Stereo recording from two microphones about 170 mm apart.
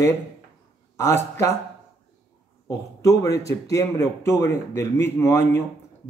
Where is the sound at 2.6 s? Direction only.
20° left (ahead or behind).